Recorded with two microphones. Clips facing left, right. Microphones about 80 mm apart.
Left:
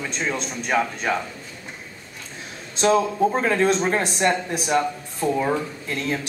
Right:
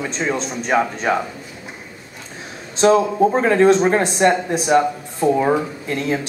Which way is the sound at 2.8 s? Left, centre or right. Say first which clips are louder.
Right 5 dB; centre.